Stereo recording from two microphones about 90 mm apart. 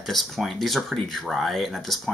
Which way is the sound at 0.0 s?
Centre (ahead or behind).